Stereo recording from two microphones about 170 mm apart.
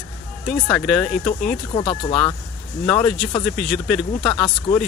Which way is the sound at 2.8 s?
10° left (ahead or behind).